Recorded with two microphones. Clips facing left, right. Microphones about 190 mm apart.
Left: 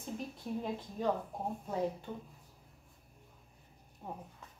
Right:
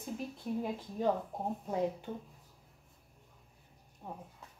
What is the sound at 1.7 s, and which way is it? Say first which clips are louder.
Speech: right 2 dB; 15° right (ahead or behind).